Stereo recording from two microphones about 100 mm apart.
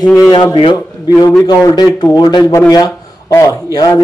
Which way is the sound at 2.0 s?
45° left (ahead or behind).